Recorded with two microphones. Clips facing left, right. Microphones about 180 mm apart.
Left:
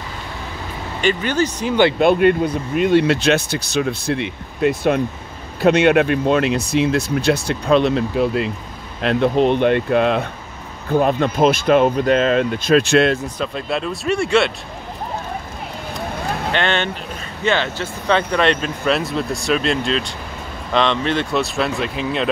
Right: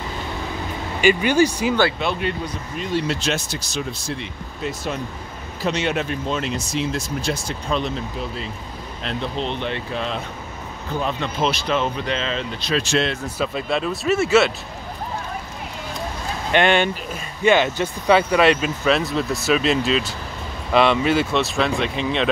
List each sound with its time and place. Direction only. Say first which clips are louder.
1.0 s speech: right 2 dB; 10° right (ahead or behind)
2.0 s speech: left 11 dB; 55° left (ahead or behind)
13.4 s speech: even; centre (ahead or behind)
16.5 s speech: right 6 dB; 10° right (ahead or behind)